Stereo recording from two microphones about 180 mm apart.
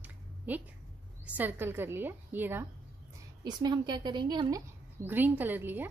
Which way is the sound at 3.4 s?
25° right (ahead or behind).